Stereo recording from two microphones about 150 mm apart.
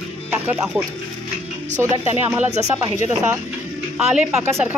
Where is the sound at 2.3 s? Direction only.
15° right (ahead or behind).